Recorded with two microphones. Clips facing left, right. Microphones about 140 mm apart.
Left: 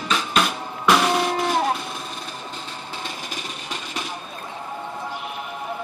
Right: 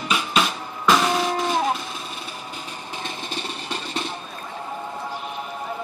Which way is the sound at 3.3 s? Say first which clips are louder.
Right 2 dB; 30° right (ahead or behind).